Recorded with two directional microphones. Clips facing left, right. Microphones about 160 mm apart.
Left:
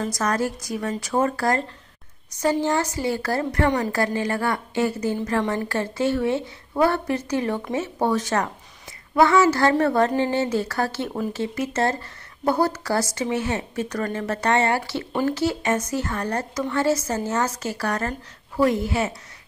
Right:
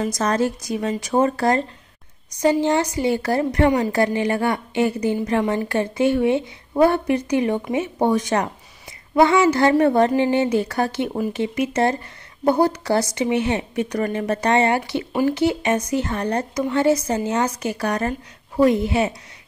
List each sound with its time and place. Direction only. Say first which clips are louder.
0.0 s a woman's voice: right 3 dB; 20° right (ahead or behind)